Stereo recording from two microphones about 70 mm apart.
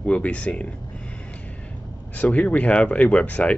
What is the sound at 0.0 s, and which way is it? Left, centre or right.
Speech, centre.